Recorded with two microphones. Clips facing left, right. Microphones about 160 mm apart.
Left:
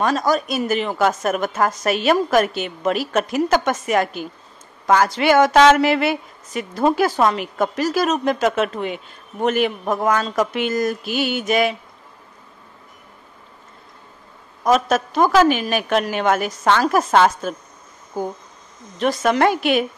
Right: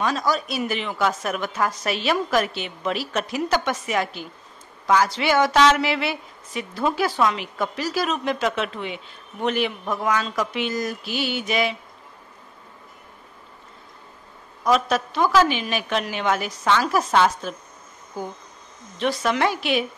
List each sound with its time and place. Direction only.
0.0 s a woman's voice: 50° left (ahead or behind)
14.6 s a woman's voice: 45° left (ahead or behind)